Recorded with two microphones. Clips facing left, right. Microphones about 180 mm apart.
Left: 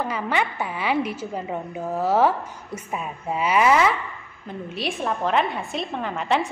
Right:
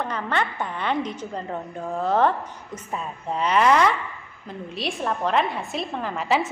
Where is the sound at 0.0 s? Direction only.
10° left (ahead or behind).